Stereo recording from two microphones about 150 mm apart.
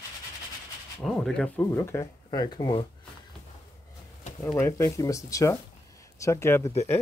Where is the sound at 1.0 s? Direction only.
Centre (ahead or behind).